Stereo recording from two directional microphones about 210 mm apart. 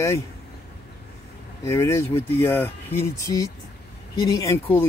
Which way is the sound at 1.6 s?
15° left (ahead or behind).